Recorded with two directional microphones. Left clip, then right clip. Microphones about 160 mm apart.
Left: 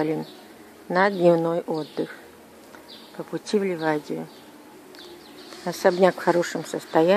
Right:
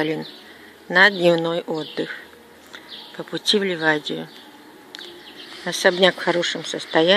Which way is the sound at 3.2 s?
15° right (ahead or behind).